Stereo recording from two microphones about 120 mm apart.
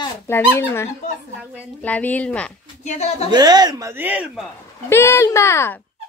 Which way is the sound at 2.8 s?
75° left (ahead or behind).